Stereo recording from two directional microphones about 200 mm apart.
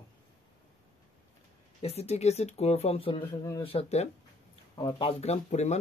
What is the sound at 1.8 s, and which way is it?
Speech, 30° left (ahead or behind).